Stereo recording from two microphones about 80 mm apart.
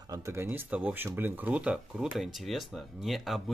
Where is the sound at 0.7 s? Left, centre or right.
Right.